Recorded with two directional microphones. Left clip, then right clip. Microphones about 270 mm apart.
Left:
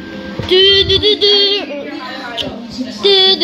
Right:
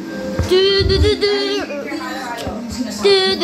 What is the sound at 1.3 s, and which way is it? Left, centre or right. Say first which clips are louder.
Speech: left 7 dB; centre.